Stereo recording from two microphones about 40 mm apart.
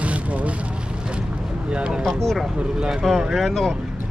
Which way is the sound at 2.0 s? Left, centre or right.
Centre.